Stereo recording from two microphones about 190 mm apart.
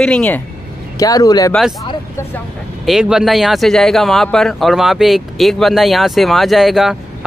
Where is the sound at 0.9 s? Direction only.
20° left (ahead or behind).